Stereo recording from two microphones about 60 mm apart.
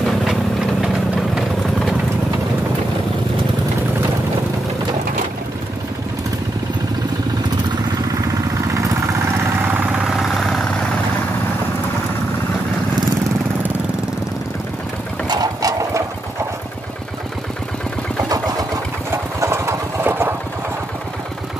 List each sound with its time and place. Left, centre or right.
0.0 s vehicle: centre
8.1 s vehicle: right
9.7 s vehicle: right
10.1 s vehicle: centre
15.4 s sewing machine: right
19.4 s engine: right
20.1 s engine: right